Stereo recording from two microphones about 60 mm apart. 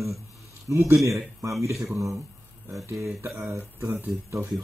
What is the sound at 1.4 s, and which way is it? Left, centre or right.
A man's voice, right.